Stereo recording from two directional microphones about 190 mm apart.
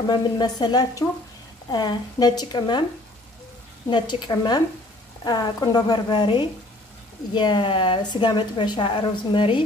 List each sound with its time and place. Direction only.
0.0 s a woman's voice: 20° left (ahead or behind)
3.9 s a woman's voice: 25° left (ahead or behind)